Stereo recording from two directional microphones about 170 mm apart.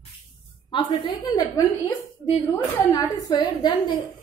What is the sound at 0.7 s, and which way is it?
Speech, 25° left (ahead or behind).